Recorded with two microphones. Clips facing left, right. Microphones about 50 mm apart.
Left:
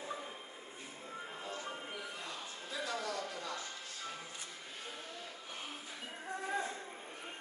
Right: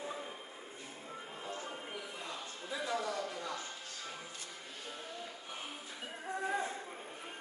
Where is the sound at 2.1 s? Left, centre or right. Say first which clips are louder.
Right 1 dB; centre.